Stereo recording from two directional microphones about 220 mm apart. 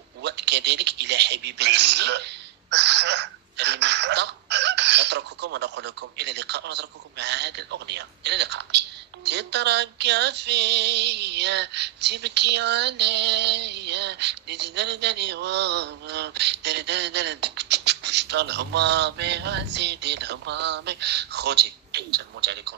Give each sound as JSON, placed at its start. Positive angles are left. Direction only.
{"t": 0.2, "sound": "speech", "side_deg": -50}